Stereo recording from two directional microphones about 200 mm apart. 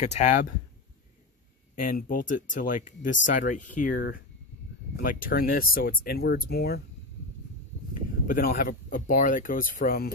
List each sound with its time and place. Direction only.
0.0 s speech: 35° left (ahead or behind)
1.8 s speech: 45° left (ahead or behind)
5.0 s speech: 45° left (ahead or behind)
7.9 s speech: 45° left (ahead or behind)